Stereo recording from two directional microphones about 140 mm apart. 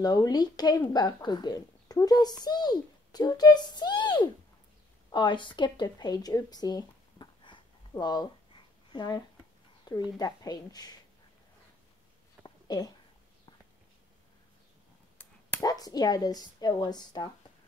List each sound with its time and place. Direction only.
0.0 s speech: 30° left (ahead or behind)
12.4 s a sound: 30° left (ahead or behind)
15.6 s speech: 25° left (ahead or behind)